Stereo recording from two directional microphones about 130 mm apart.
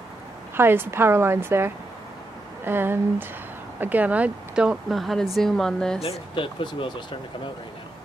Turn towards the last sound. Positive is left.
turn(degrees=40)  # may be behind; listen again after turning